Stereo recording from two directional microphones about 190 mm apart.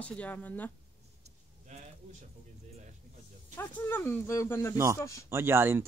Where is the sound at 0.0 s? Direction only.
5° left (ahead or behind).